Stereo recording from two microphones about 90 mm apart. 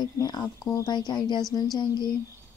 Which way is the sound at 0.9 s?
55° left (ahead or behind).